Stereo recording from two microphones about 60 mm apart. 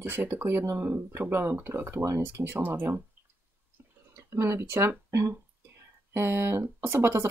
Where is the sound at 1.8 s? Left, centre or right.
Right.